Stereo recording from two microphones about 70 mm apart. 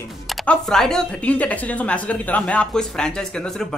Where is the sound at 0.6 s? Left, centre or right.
Centre.